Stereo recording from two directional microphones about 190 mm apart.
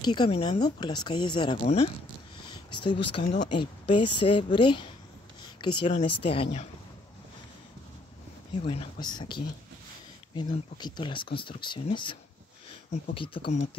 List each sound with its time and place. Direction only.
0.0 s speech: 25° left (ahead or behind)
8.6 s speech: 25° left (ahead or behind)